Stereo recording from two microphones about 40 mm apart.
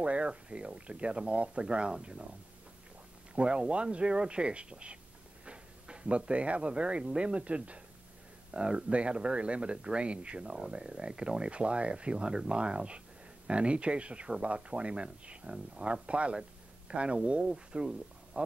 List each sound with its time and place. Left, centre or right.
0.0 s speech: right
3.3 s speech: right